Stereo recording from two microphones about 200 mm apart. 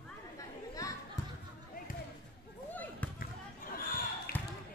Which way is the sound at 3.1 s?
45° left (ahead or behind).